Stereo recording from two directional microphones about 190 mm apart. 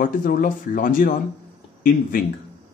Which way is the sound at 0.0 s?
50° left (ahead or behind).